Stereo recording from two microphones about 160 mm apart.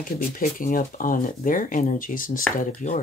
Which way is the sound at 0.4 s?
60° left (ahead or behind).